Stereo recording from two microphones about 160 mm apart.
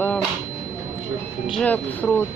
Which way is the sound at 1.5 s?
10° left (ahead or behind).